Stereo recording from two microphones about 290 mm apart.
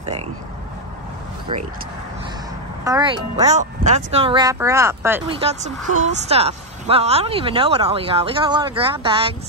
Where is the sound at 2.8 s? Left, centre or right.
Centre.